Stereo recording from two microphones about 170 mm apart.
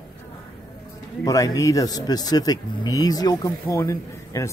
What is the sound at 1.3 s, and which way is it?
Speech, 20° left (ahead or behind).